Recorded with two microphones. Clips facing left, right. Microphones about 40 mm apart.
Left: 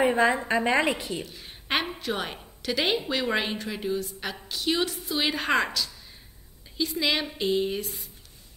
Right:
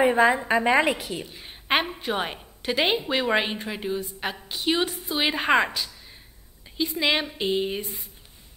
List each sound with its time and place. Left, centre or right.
0.0 s a woman's voice: centre
1.2 s a woman's voice: centre